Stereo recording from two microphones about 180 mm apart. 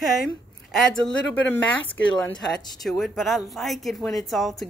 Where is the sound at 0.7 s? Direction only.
Centre (ahead or behind).